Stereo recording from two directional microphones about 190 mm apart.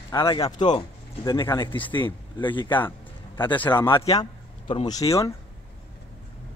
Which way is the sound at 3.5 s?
10° left (ahead or behind).